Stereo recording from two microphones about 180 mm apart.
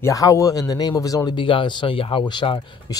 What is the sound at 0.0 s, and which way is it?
Speech, 20° left (ahead or behind).